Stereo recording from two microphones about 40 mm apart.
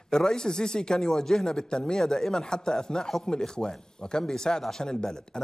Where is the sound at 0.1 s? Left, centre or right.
Centre.